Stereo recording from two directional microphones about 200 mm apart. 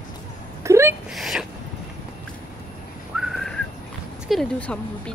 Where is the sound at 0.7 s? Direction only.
15° right (ahead or behind).